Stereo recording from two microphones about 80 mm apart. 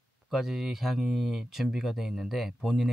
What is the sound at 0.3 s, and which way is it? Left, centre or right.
Speech, centre.